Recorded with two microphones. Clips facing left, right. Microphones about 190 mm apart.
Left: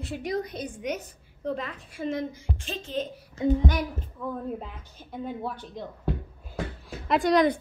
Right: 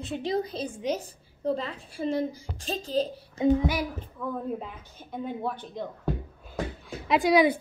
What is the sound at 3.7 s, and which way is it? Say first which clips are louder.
Speech: even; 5° right (ahead or behind).